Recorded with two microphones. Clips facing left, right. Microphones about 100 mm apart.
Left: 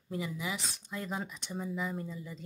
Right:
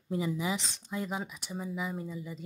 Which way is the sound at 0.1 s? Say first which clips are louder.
Right 5 dB; 25° right (ahead or behind).